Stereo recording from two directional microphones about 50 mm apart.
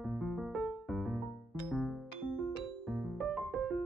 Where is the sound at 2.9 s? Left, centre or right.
Centre.